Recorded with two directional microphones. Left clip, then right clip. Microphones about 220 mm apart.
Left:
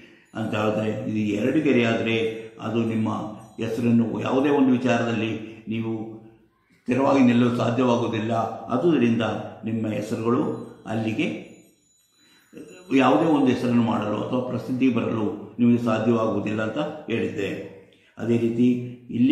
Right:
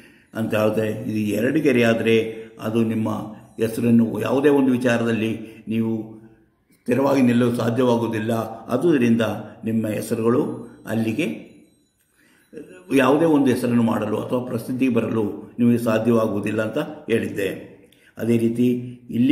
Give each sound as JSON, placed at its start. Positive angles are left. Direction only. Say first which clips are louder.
{"t": 0.3, "sound": "a man's voice", "louder": "right 4 dB", "side_deg": -50}
{"t": 6.9, "sound": "a man's voice", "louder": "right 1 dB", "side_deg": -45}
{"t": 12.8, "sound": "a man's voice", "louder": "right 2 dB", "side_deg": -45}